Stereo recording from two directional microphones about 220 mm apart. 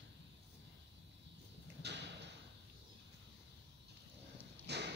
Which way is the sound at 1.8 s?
50° right (ahead or behind).